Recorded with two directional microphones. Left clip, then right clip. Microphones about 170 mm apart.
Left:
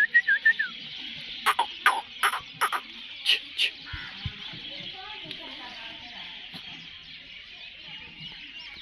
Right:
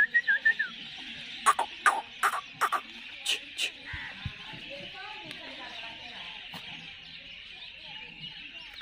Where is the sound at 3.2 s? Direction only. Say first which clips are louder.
Left 7 dB; 35° right (ahead or behind).